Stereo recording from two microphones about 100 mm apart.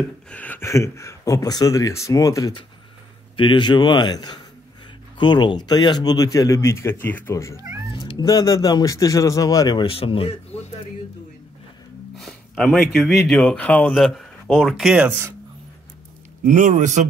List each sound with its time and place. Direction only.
0.3 s speech: 15° left (ahead or behind)
0.6 s speech: 30° left (ahead or behind)
3.3 s a man's voice: 55° left (ahead or behind); by 7.6 s 30° left (ahead or behind)
7.9 s cat: 50° left (ahead or behind)
8.3 s speech: 35° left (ahead or behind)
9.8 s speech: 65° left (ahead or behind)
12.2 s a sound: centre (ahead or behind)
12.6 s speech: 5° left (ahead or behind)
13.9 s speech: 5° left (ahead or behind)